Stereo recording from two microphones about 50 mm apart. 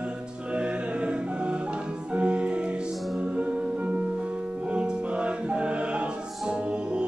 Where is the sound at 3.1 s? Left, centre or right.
Right.